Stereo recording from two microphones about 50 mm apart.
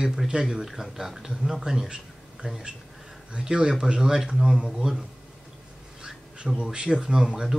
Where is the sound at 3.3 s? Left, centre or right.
Centre.